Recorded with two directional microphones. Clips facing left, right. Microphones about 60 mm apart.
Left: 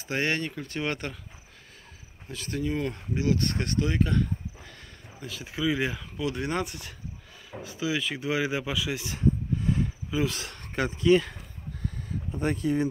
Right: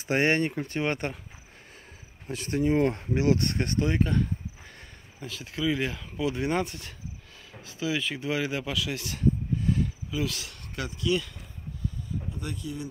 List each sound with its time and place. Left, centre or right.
0.1 s speech: right
2.2 s speech: right
3.5 s speech: centre
5.2 s speech: centre
6.1 s speech: centre
9.1 s a sound: left
10.4 s speech: left
12.4 s speech: left